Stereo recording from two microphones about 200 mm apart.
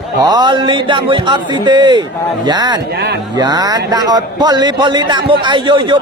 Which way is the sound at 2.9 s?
55° right (ahead or behind).